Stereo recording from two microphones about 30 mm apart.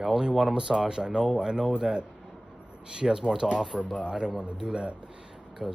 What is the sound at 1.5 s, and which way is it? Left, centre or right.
Speech, right.